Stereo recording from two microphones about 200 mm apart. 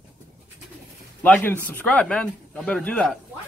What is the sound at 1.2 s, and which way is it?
A man's voice, 10° left (ahead or behind).